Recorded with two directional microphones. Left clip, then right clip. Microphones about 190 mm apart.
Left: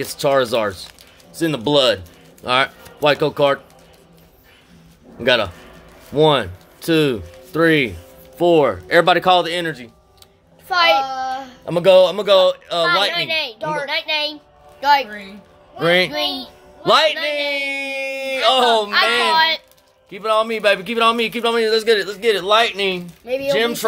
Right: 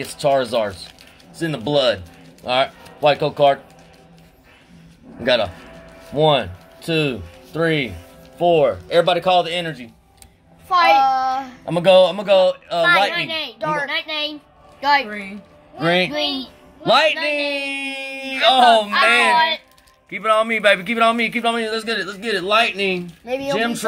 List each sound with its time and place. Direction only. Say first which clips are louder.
0.1 s a man's voice: left 1 dB; 50° left (ahead or behind)
5.2 s a man's voice: left 1 dB; 45° left (ahead or behind)
11.0 s child singing: right 5 dB; 10° right (ahead or behind)
11.6 s a man's voice: left 1 dB; 45° left (ahead or behind)
13.0 s speech: left 1 dB; 35° left (ahead or behind)
13.6 s a child's voice: right 1 dB; centre (ahead or behind)
13.8 s a child's voice: left 3 dB; 30° left (ahead or behind)
15.8 s a man's voice: left 2 dB; 45° left (ahead or behind)
16.1 s speech: even; 20° left (ahead or behind)
16.3 s a man's voice: right 1 dB; 40° left (ahead or behind)